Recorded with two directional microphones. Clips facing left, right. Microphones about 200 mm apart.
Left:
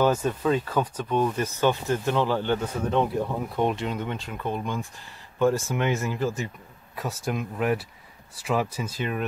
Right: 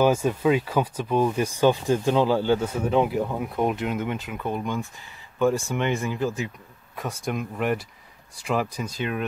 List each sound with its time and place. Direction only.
0.0 s speech: 10° right (ahead or behind)